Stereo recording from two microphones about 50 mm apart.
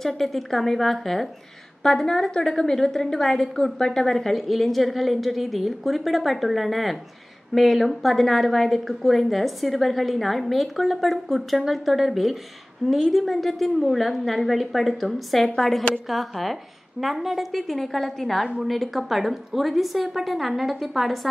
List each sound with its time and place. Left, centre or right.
0.0 s a woman's voice: centre
15.4 s a woman's voice: centre
16.1 s a woman's voice: centre